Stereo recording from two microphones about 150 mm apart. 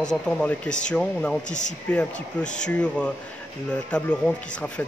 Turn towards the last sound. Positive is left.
turn(degrees=10)  # may be behind; listen again after turning